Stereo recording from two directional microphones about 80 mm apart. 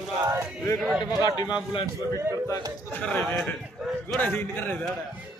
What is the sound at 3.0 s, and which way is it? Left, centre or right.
Speech, centre.